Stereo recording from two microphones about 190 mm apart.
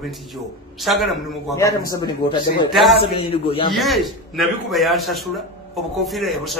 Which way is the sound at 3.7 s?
Centre (ahead or behind).